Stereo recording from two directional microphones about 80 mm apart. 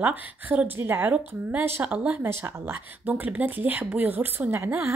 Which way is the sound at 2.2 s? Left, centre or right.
Right.